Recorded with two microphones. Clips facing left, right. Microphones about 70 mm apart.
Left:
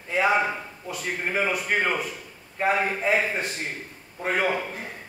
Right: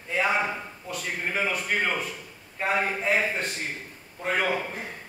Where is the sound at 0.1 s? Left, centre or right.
Centre.